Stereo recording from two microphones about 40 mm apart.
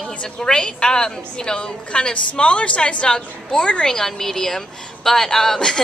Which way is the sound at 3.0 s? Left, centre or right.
Centre.